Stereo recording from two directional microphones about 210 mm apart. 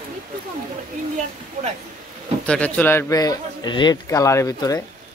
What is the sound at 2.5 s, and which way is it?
A man's voice, 5° left (ahead or behind).